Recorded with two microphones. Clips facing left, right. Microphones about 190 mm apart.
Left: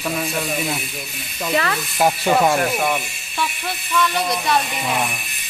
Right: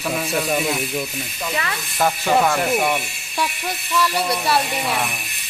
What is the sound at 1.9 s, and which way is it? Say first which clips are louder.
Speech: left 1 dB; 20° left (ahead or behind).